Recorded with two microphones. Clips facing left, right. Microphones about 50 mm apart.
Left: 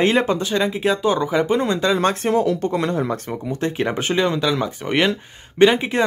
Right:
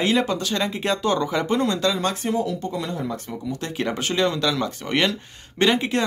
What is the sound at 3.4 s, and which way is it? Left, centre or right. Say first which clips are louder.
Speech: left 4 dB; left.